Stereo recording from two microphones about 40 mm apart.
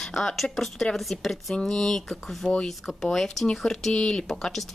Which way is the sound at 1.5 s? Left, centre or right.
Centre.